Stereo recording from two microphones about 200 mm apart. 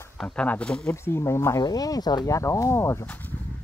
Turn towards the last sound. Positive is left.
turn(degrees=10)  # may be behind; listen again after turning